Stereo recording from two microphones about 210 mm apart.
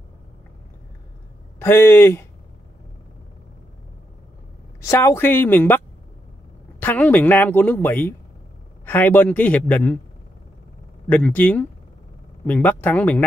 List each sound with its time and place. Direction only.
1.6 s a woman's voice: 10° left (ahead or behind)
4.8 s a woman's voice: 10° left (ahead or behind)
6.8 s a woman's voice: 10° left (ahead or behind)
11.1 s a woman's voice: 5° left (ahead or behind)